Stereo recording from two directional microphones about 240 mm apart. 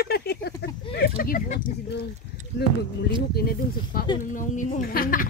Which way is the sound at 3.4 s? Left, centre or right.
Left.